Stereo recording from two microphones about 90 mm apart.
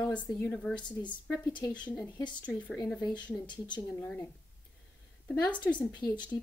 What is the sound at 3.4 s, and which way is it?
Speech, 60° left (ahead or behind).